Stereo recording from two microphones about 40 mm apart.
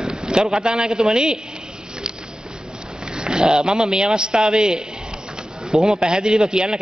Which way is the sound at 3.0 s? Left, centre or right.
Centre.